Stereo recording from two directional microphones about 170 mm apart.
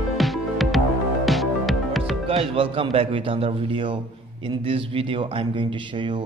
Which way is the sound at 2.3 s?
35° right (ahead or behind).